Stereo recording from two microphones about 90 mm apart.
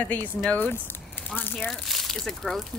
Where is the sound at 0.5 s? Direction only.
25° left (ahead or behind).